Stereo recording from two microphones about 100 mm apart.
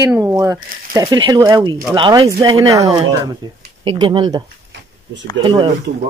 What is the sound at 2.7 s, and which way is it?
Speech, 35° right (ahead or behind).